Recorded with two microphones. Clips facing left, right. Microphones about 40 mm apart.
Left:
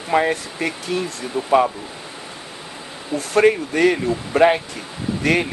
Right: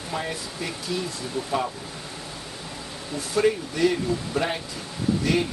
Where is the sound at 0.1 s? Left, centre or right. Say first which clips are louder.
Left 12 dB; left.